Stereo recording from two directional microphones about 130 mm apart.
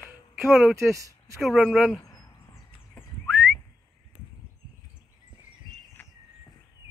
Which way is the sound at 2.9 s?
5° left (ahead or behind).